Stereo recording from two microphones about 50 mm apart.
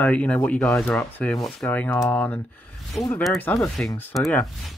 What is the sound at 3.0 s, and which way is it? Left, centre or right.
Speech, centre.